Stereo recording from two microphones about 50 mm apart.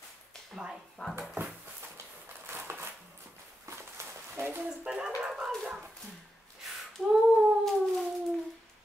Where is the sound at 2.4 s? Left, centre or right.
Right.